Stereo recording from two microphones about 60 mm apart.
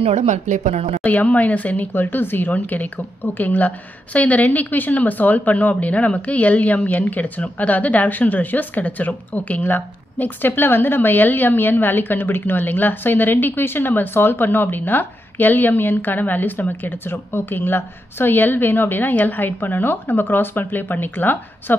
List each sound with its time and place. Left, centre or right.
1.0 s a woman's voice: left